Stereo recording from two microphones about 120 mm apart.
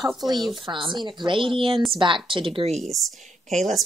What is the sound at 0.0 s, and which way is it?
Speech, centre (ahead or behind).